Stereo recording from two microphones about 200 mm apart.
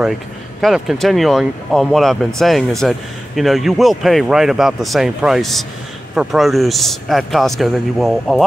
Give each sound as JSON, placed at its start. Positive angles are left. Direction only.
{"t": 0.6, "sound": "speech", "side_deg": 0}